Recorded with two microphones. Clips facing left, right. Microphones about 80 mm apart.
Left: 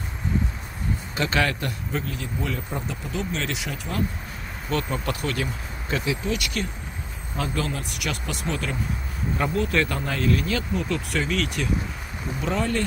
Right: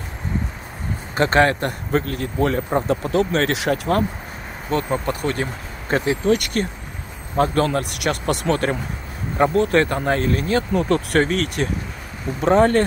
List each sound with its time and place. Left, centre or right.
1.1 s speech: right
4.6 s speech: right
9.4 s speech: right
10.7 s speech: right